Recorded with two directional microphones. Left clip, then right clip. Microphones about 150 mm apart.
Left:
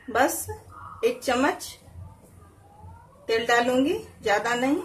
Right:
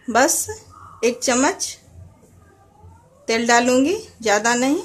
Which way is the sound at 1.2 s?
50° right (ahead or behind).